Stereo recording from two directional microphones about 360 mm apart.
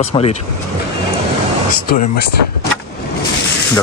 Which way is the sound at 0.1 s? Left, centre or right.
Centre.